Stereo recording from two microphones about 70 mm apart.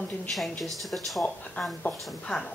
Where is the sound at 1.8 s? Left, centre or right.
Centre.